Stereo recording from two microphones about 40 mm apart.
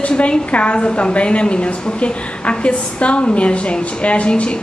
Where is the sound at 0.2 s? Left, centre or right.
Left.